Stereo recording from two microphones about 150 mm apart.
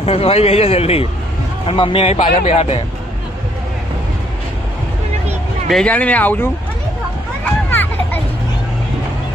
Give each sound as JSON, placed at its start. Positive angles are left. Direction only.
{"t": 0.0, "sound": "a man's voice", "side_deg": 40}
{"t": 5.7, "sound": "speech", "side_deg": 5}
{"t": 7.7, "sound": "children playing", "side_deg": 15}